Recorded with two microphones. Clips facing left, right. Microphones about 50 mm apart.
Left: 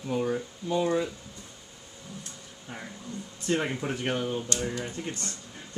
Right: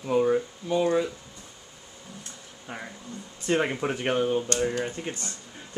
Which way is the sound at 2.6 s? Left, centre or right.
Centre.